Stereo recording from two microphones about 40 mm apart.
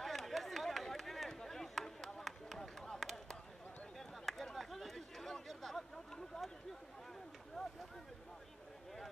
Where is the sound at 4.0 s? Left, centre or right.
Centre.